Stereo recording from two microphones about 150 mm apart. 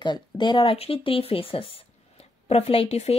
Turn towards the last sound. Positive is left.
turn(degrees=45)  # may be behind; listen again after turning